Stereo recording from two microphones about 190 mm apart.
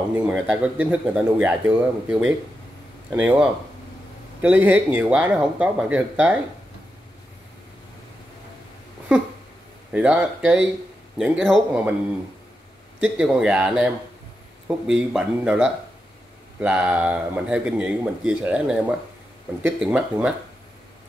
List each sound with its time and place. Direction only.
0.3 s speech: 5° right (ahead or behind)
9.9 s speech: 5° right (ahead or behind)
13.0 s speech: 5° right (ahead or behind)